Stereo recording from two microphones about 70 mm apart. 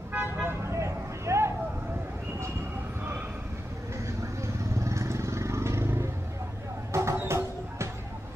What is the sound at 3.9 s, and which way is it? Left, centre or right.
Vehicle, right.